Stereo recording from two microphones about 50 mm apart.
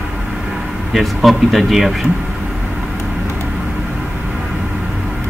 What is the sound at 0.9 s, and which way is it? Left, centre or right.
Speech, centre.